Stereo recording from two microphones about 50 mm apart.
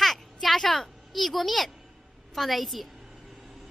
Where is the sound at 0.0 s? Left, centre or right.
Centre.